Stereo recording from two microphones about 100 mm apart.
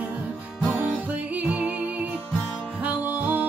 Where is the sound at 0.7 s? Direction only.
15° right (ahead or behind).